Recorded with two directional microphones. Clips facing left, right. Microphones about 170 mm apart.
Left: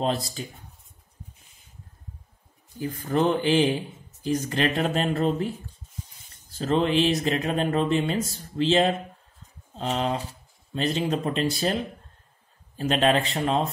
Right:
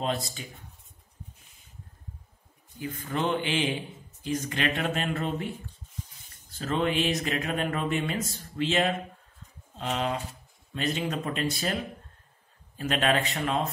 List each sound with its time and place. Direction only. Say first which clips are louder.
0.0 s speech: left 4 dB; 35° left (ahead or behind)
2.8 s speech: left 6 dB; 35° left (ahead or behind)
6.5 s speech: left 5 dB; 30° left (ahead or behind)